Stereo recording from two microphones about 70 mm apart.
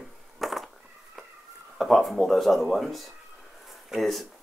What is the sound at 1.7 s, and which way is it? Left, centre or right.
Speech, centre.